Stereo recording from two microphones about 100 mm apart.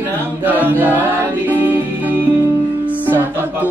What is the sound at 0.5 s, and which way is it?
Music, 20° right (ahead or behind).